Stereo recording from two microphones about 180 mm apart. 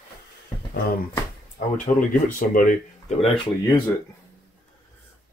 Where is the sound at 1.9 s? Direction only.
35° left (ahead or behind).